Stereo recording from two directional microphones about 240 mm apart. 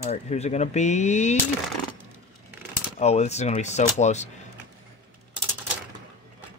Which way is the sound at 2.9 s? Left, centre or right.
Left.